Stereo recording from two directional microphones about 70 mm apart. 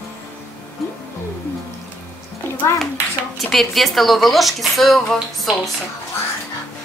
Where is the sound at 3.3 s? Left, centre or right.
Centre.